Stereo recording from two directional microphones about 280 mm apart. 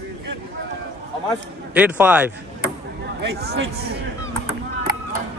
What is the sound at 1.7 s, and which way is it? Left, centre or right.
Speech, centre.